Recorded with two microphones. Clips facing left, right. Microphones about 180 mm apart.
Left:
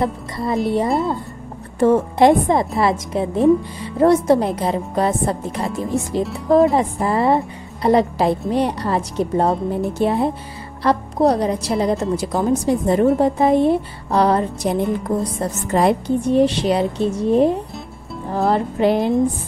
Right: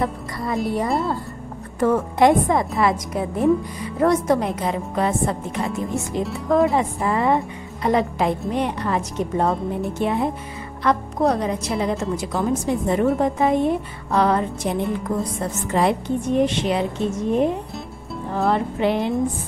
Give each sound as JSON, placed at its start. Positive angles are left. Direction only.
{"t": 0.0, "sound": "speech", "side_deg": 30}
{"t": 0.8, "sound": "speech", "side_deg": 0}
{"t": 1.8, "sound": "a woman's voice", "side_deg": 25}